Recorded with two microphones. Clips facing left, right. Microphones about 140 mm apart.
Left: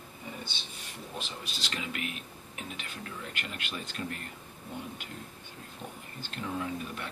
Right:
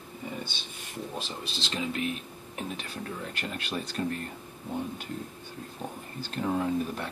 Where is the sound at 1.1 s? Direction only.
30° right (ahead or behind).